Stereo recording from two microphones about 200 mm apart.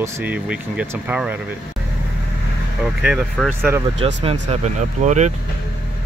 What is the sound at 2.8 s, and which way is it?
Speech, 5° right (ahead or behind).